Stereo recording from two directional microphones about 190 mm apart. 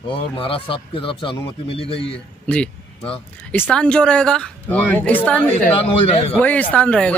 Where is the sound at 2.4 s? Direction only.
5° left (ahead or behind).